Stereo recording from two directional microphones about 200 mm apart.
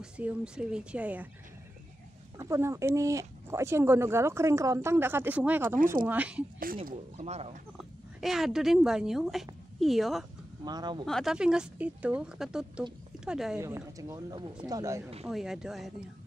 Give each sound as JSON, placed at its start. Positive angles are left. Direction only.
{"t": 0.0, "sound": "speech", "side_deg": -5}
{"t": 2.3, "sound": "speech", "side_deg": -15}
{"t": 6.9, "sound": "speech", "side_deg": -35}
{"t": 8.2, "sound": "a woman's voice", "side_deg": 0}
{"t": 10.6, "sound": "speech", "side_deg": -20}
{"t": 11.1, "sound": "a woman's voice", "side_deg": 0}
{"t": 13.6, "sound": "speech", "side_deg": -15}
{"t": 15.2, "sound": "a woman's voice", "side_deg": 0}